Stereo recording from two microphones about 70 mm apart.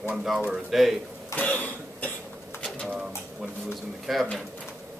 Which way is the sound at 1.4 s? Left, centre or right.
Left.